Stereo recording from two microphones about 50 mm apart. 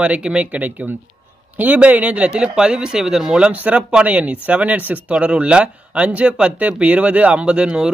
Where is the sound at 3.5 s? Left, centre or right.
Right.